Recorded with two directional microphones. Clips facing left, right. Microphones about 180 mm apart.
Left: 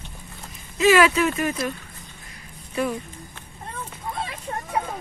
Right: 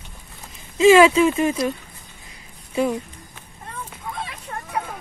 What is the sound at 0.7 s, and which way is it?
Speech, 25° right (ahead or behind).